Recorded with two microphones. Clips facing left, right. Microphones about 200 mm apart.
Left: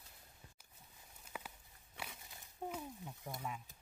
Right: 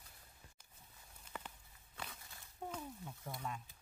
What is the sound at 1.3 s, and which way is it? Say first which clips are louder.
Walk: even; 10° left (ahead or behind).